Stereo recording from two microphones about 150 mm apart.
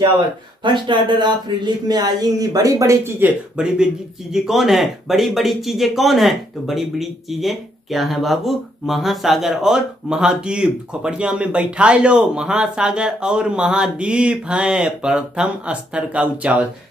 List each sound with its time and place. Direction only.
0.7 s speech: 30° right (ahead or behind); by 16.6 s 10° right (ahead or behind)